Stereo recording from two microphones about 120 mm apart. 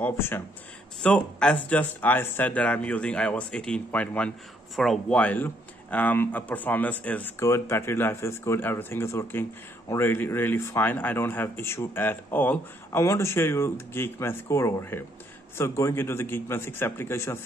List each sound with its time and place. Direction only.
0.0 s speech: 20° left (ahead or behind)